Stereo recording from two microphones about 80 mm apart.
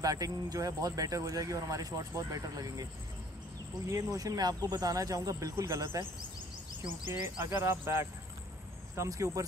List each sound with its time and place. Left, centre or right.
0.0 s speech: right
7.1 s speech: right